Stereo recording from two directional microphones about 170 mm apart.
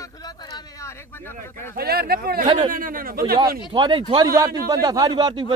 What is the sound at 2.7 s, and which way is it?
Speech, 55° right (ahead or behind).